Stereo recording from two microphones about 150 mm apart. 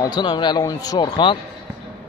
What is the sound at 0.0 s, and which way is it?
Speech, 30° left (ahead or behind).